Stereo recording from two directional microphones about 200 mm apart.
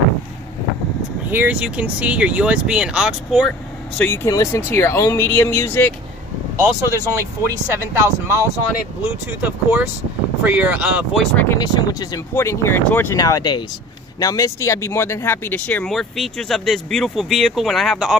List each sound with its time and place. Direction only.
1.3 s speech: 10° right (ahead or behind)
4.0 s speech: 10° left (ahead or behind)
7.4 s speech: 15° right (ahead or behind)
11.3 s speech: 15° left (ahead or behind)